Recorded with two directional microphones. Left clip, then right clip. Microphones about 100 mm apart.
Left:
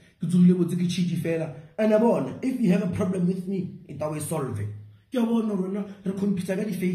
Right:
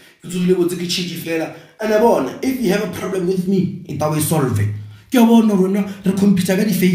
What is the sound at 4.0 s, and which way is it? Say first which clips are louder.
Speech: right 11 dB; 20° left (ahead or behind).